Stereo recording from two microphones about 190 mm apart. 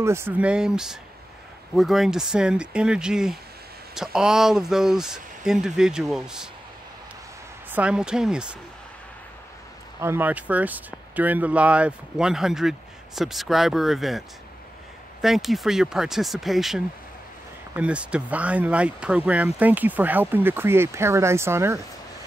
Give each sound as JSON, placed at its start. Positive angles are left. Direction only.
{"t": 0.0, "sound": "speech", "side_deg": -15}
{"t": 7.7, "sound": "speech", "side_deg": -5}
{"t": 9.9, "sound": "speech", "side_deg": -10}
{"t": 15.2, "sound": "speech", "side_deg": 0}